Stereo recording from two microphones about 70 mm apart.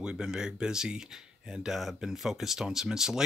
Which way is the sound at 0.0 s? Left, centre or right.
Centre.